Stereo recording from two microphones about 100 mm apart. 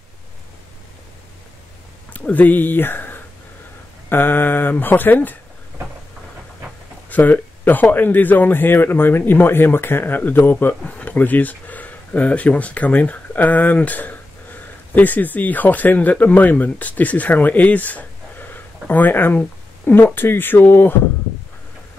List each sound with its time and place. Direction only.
2.1 s speech: 15° left (ahead or behind)
7.1 s speech: 15° left (ahead or behind)